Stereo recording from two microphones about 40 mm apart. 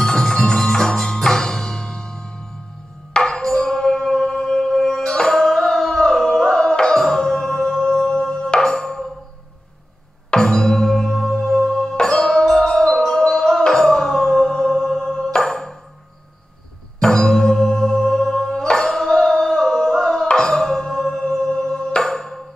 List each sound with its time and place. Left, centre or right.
0.0 s music: centre
10.3 s music: centre
17.0 s music: centre
21.3 s singing bowl: centre
22.0 s music: centre